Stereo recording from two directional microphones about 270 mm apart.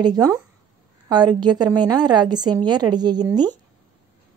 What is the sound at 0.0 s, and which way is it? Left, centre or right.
A woman's voice, centre.